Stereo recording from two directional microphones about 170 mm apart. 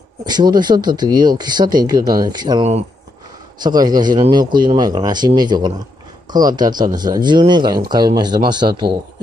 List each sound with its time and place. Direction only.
0.2 s speech: 25° right (ahead or behind)
3.6 s speech: 25° right (ahead or behind)
8.6 s a man's voice: 50° right (ahead or behind)